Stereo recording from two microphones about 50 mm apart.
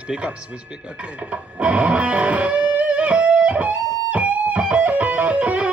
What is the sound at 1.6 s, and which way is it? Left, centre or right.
Music, right.